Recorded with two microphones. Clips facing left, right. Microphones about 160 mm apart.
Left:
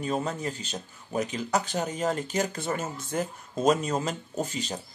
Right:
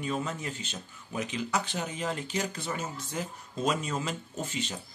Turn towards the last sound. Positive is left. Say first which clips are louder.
# left 4 dB
turn(degrees=40)  # may be behind; listen again after turning